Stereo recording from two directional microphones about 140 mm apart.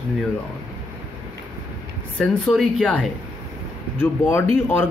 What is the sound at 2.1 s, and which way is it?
Speech, 5° left (ahead or behind).